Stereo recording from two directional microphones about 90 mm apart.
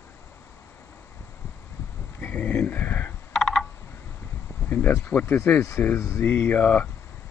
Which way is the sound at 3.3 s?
5° left (ahead or behind).